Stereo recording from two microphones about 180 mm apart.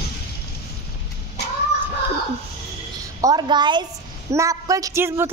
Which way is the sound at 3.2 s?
20° right (ahead or behind).